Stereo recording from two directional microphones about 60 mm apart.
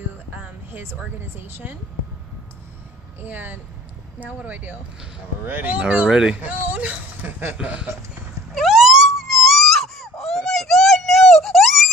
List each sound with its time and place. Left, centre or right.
1.5 s speech: right
3.2 s speech: right
6.0 s speech: centre
6.4 s speech: right
7.5 s speech: centre
8.5 s wail: centre